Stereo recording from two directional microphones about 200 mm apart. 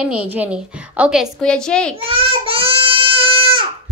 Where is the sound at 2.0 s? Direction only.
25° right (ahead or behind).